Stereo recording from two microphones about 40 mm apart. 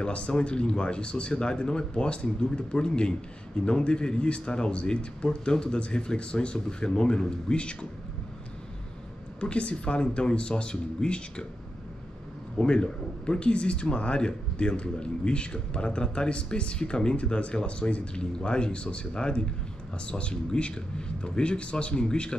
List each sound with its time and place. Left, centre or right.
0.0 s speech: left
9.4 s speech: left
12.5 s speech: left